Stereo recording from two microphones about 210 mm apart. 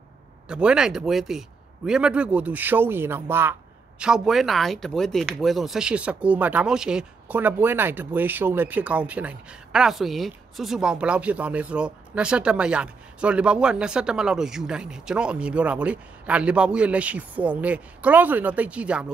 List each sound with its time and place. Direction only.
0.5 s a man's voice: 5° right (ahead or behind)